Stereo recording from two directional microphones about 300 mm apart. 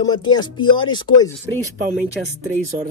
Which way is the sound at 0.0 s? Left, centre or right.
Centre.